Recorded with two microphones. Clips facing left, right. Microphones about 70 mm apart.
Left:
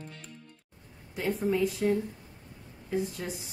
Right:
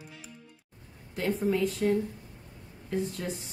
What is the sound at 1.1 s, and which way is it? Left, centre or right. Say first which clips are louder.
A woman's voice: right 1 dB; centre.